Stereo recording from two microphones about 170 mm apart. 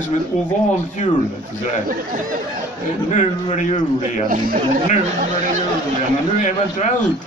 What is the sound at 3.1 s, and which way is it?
Speech, 45° left (ahead or behind).